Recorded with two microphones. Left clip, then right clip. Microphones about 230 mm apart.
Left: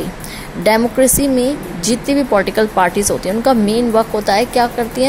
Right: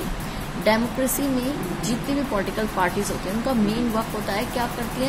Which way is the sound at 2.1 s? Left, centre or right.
Left.